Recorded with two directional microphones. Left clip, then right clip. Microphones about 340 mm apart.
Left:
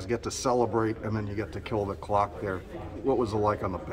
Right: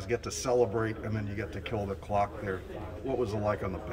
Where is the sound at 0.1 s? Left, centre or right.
Centre.